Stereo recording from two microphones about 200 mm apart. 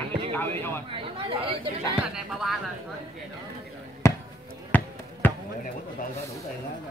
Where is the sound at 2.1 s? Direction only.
Centre (ahead or behind).